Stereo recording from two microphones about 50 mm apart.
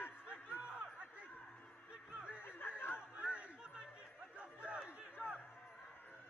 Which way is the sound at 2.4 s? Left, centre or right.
Left.